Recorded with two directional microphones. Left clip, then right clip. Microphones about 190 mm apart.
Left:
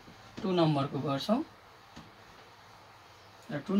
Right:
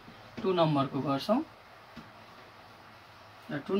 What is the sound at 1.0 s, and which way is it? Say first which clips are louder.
Speech: right 2 dB; 15° left (ahead or behind).